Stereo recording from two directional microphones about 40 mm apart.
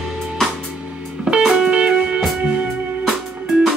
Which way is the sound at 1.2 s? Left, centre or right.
Right.